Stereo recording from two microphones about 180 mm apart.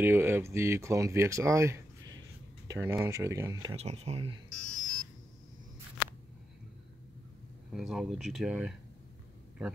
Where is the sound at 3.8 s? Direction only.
35° right (ahead or behind).